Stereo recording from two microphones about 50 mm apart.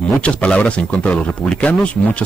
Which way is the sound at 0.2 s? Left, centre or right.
Left.